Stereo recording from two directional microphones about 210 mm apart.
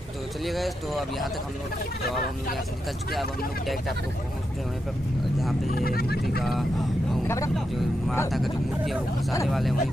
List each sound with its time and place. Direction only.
0.5 s speech: centre (ahead or behind)
5.8 s speech: 45° left (ahead or behind)
7.2 s speech: 15° left (ahead or behind)
7.5 s speech: centre (ahead or behind)